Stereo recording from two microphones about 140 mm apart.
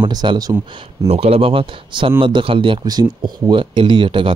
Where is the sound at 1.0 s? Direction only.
45° right (ahead or behind).